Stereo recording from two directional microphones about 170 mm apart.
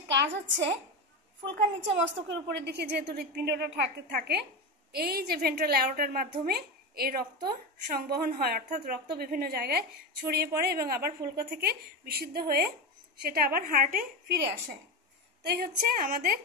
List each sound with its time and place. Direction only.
1.4 s a woman's voice: 90° right
4.1 s a woman's voice: 65° right (ahead or behind)